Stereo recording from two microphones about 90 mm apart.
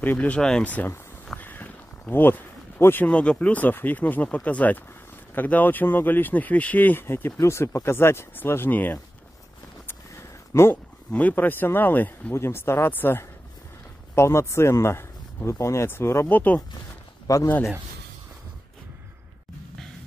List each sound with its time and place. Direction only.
0.0 s speech: 20° left (ahead or behind)
10.5 s speech: 30° left (ahead or behind)
11.1 s speech: 15° left (ahead or behind)
17.3 s a man's voice: 40° left (ahead or behind)